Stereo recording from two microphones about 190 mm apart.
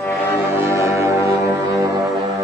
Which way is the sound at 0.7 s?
15° right (ahead or behind).